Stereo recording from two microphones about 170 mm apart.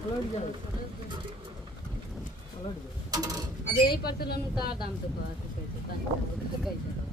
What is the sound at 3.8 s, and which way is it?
Speech, 65° left (ahead or behind).